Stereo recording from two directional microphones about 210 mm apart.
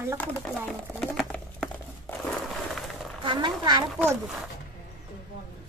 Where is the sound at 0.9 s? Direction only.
Centre (ahead or behind).